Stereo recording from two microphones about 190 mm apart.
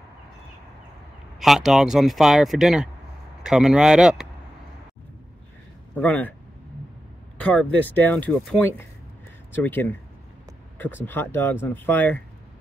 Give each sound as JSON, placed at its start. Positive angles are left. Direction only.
{"t": 1.4, "sound": "speech", "side_deg": 0}
{"t": 5.9, "sound": "speech", "side_deg": 10}
{"t": 7.3, "sound": "speech", "side_deg": 5}
{"t": 11.1, "sound": "speech", "side_deg": 10}